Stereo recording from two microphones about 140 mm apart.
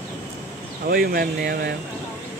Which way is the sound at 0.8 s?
90° right.